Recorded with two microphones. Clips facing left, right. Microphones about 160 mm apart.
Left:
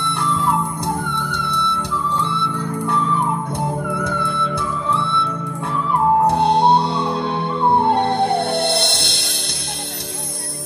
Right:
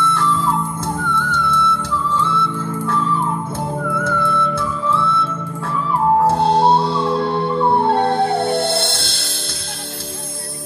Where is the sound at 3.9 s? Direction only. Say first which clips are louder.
Right 3 dB; 15° left (ahead or behind).